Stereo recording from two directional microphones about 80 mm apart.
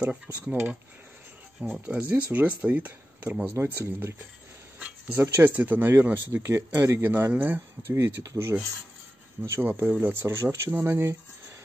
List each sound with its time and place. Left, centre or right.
0.0 s speech: centre
1.6 s speech: centre
3.5 s speech: right
4.7 s a sound: centre
5.2 s speech: right
7.0 s speech: right
8.0 s speech: right
9.5 s speech: right
10.2 s speech: right